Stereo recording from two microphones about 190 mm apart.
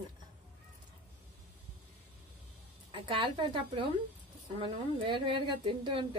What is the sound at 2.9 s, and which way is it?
Speech, 25° right (ahead or behind).